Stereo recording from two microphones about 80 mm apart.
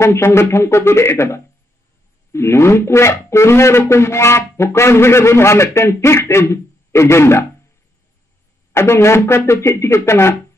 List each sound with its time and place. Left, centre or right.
0.0 s speech: left
8.7 s speech: left